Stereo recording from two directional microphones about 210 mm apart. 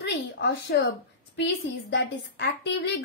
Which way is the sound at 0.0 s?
55° left (ahead or behind).